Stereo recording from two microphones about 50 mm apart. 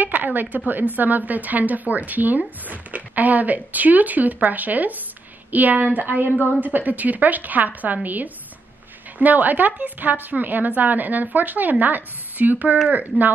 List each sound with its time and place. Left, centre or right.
0.0 s a woman's voice: right